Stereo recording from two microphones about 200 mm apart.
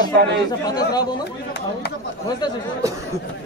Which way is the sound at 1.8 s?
55° left (ahead or behind).